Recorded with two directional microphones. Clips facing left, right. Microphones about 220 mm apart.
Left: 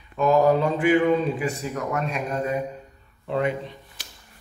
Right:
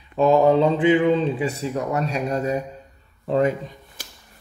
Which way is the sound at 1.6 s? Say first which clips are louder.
Right 3 dB; 30° right (ahead or behind).